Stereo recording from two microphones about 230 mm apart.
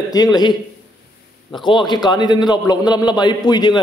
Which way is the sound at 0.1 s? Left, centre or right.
Centre.